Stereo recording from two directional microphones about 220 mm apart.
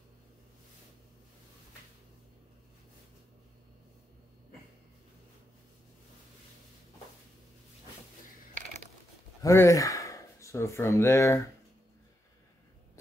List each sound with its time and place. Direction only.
9.4 s speech: 15° left (ahead or behind)